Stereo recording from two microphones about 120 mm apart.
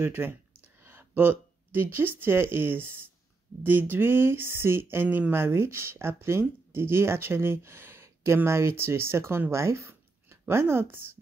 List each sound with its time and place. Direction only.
0.0 s speech: 20° right (ahead or behind)